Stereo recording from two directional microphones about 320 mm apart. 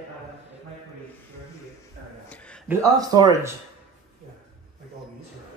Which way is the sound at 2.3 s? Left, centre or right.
Centre.